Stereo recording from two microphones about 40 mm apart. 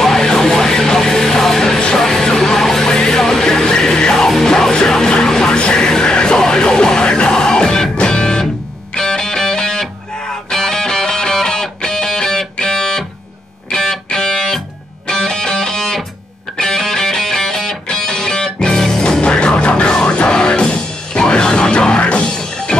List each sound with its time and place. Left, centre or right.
0.0 s music: centre